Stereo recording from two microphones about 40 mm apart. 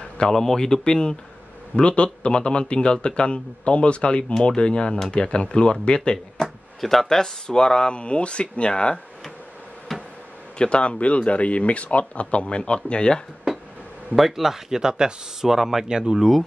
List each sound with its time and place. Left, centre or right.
0.3 s speech: centre
6.8 s speech: centre; by 9.0 s left
9.9 s a sound: centre
10.6 s speech: left
14.1 s speech: centre